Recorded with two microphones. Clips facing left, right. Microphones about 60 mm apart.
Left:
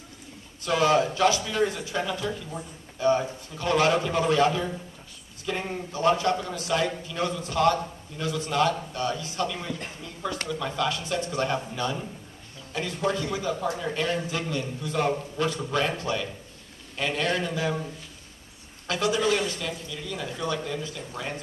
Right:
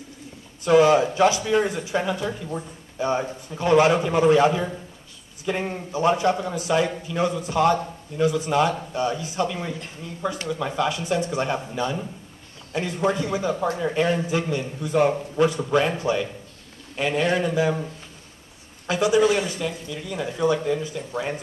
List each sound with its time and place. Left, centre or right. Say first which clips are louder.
0.7 s a man's voice: right 6 dB; right
18.9 s speech: right 6 dB; centre